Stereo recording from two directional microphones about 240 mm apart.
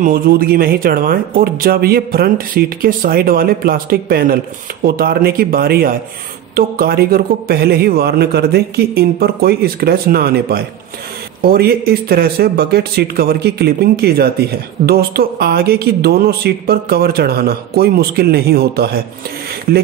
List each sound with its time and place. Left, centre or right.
0.0 s speech: right